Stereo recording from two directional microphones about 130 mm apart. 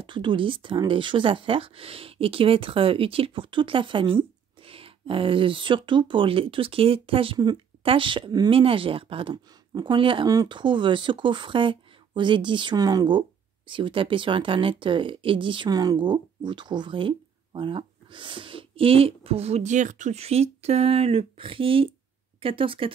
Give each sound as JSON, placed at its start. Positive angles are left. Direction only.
{"t": 0.0, "sound": "speech", "side_deg": -40}
{"t": 10.2, "sound": "speech", "side_deg": -30}